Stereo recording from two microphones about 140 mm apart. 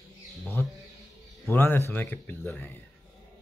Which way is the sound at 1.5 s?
15° left (ahead or behind).